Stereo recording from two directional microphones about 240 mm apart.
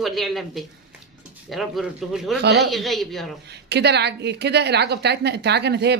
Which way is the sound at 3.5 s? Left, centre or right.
Right.